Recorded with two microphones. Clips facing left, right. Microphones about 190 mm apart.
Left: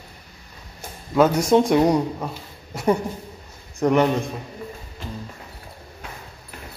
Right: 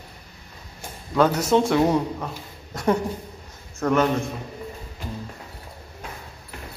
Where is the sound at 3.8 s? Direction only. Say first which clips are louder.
Left 2 dB; 15° left (ahead or behind).